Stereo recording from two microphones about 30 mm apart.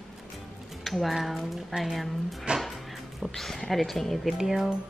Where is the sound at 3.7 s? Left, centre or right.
Centre.